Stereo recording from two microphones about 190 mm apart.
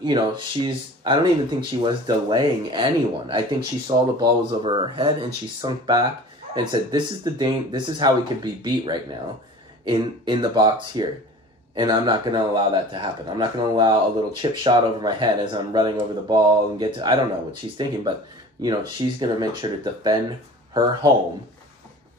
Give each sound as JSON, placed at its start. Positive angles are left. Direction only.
{"t": 0.0, "sound": "speech", "side_deg": -25}
{"t": 18.6, "sound": "speech", "side_deg": -25}